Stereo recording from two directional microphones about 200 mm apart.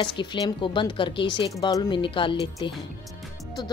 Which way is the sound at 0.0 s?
25° left (ahead or behind).